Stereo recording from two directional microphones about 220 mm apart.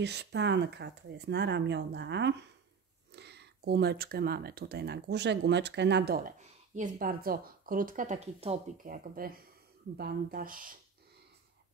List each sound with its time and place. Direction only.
0.0 s speech: 50° right (ahead or behind)